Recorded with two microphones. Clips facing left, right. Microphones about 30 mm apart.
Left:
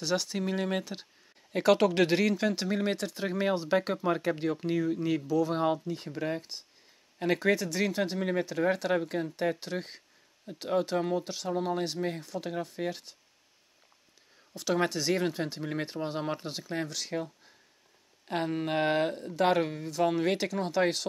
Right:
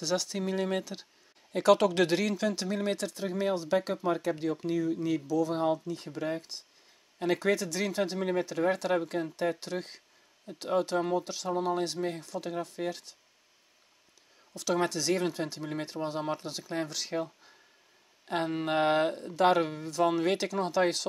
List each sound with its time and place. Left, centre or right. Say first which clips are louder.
0.0 s speech: left 1 dB; centre
14.5 s speech: even; centre
16.7 s speech: right 1 dB; centre